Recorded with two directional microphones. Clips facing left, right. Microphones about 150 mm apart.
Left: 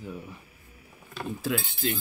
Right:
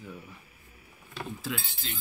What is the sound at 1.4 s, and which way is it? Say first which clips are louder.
Speech: left 8 dB; 55° left (ahead or behind).